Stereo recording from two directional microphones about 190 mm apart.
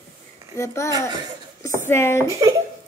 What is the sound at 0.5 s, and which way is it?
A woman's voice, 15° left (ahead or behind).